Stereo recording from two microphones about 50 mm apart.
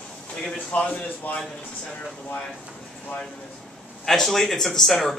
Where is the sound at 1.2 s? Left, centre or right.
Left.